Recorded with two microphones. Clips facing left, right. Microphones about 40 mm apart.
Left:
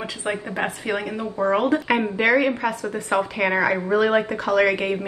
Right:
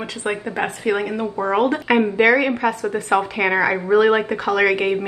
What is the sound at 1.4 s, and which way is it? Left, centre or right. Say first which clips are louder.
Speech: left 2 dB; right.